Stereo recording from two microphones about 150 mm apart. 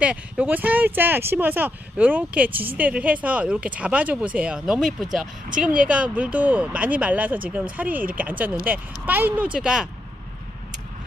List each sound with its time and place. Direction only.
0.0 s speech: 10° right (ahead or behind)